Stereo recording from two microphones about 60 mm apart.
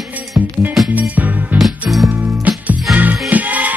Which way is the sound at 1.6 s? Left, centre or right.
Centre.